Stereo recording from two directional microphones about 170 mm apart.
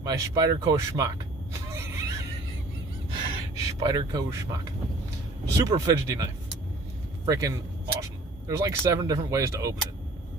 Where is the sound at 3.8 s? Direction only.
20° right (ahead or behind).